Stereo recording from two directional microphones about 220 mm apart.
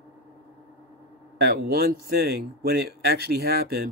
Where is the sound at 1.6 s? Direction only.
45° right (ahead or behind).